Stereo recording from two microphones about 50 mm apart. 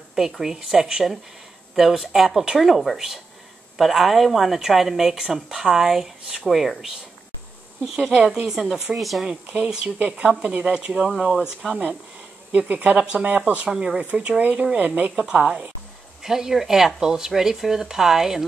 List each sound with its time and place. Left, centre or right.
0.1 s speech: centre
9.2 s a woman's voice: centre
12.5 s a woman's voice: right; by 18.4 s centre